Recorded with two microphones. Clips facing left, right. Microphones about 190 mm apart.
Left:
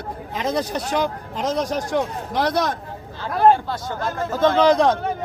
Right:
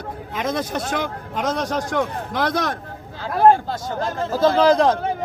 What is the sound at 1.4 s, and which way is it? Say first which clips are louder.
Speech: even; 65° right (ahead or behind).